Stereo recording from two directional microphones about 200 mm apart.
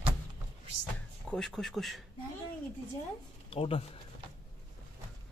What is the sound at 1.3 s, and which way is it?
Speech, centre (ahead or behind).